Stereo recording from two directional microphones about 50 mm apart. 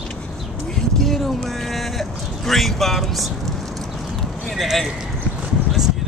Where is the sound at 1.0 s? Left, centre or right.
Centre.